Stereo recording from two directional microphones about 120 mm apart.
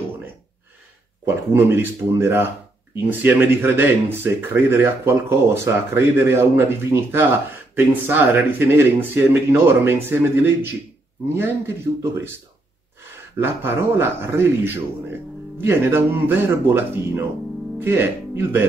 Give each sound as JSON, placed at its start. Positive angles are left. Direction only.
{"t": 1.2, "sound": "speech", "side_deg": -20}
{"t": 13.4, "sound": "speech", "side_deg": -20}